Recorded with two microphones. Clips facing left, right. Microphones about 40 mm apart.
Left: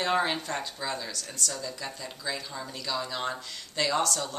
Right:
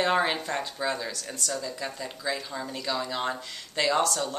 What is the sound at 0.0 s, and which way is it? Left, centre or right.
Speech, centre.